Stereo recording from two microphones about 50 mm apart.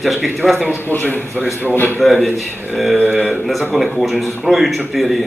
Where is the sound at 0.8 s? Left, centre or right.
Left.